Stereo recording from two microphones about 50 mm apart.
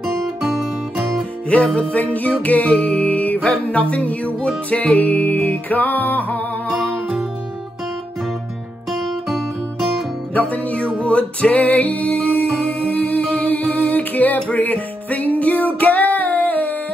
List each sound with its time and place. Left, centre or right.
0.0 s music: centre
1.5 s music: left
8.9 s music: centre
10.5 s music: left